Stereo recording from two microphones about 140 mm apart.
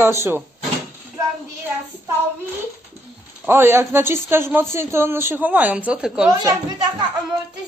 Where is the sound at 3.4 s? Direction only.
15° right (ahead or behind).